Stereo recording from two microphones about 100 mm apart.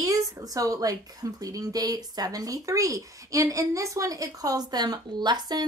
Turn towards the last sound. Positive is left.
turn(degrees=-45)  # may be behind; listen again after turning